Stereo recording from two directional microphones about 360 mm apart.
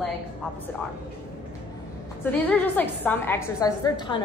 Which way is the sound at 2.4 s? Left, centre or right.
Centre.